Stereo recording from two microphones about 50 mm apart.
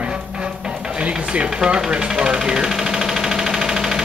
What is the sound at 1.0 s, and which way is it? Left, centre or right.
Speech, right.